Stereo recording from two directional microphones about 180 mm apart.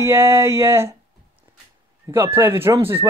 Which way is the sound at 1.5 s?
20° right (ahead or behind).